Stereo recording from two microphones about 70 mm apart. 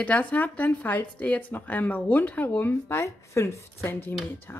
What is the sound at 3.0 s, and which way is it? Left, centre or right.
Speech, left.